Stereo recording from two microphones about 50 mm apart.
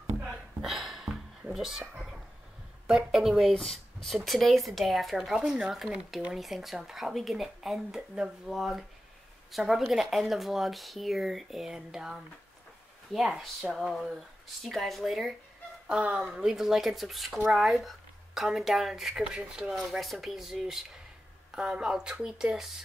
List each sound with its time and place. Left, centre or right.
0.6 s a sound: centre
1.5 s a child's voice: centre
3.5 s speech: centre
5.4 s speech: centre
16.3 s speech: centre
19.3 s speech: centre
19.7 s speech: centre